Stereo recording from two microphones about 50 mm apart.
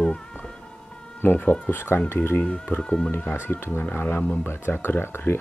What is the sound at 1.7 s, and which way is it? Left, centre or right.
Speech, left.